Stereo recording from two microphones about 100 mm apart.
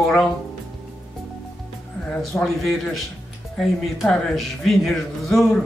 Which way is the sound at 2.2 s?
Centre (ahead or behind).